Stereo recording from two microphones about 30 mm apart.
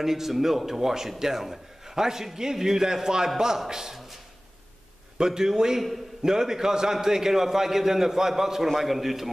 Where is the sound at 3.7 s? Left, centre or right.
Centre.